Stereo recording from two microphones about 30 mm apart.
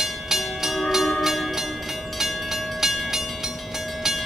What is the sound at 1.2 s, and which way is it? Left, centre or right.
Music, centre.